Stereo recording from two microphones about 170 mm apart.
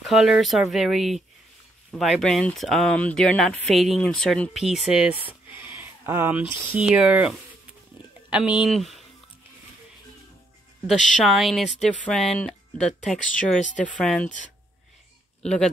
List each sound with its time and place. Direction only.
0.0 s speech: centre (ahead or behind)
5.5 s a sound: 10° right (ahead or behind)
6.7 s speech: 5° right (ahead or behind)
11.2 s speech: centre (ahead or behind)
13.6 s speech: 45° left (ahead or behind)
13.9 s speech: 5° left (ahead or behind)
15.4 s speech: 5° left (ahead or behind)